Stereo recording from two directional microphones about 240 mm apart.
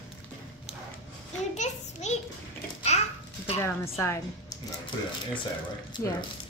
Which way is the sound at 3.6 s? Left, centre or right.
Centre.